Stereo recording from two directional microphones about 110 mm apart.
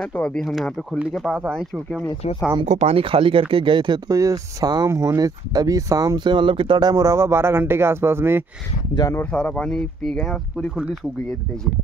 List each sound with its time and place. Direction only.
0.1 s speech: 10° left (ahead or behind)
2.6 s speech: 80° right; by 4.0 s 50° right (ahead or behind)
4.1 s speech: 30° right (ahead or behind)
9.1 s speech: 10° left (ahead or behind)